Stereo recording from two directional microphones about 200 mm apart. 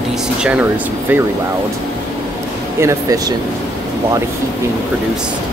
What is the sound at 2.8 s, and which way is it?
Speech, 15° right (ahead or behind).